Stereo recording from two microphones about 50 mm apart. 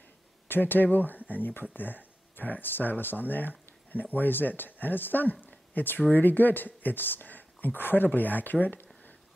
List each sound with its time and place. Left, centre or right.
0.5 s speech: left